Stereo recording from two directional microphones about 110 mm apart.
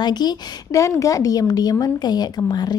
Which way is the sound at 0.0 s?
40° left (ahead or behind).